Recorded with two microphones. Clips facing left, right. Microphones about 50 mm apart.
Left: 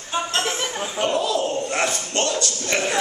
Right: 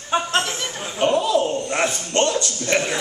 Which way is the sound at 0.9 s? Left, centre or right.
Centre.